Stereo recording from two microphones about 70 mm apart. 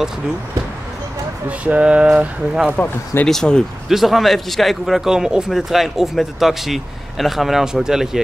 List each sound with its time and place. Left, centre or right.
1.6 s speech: centre
3.3 s a man's voice: centre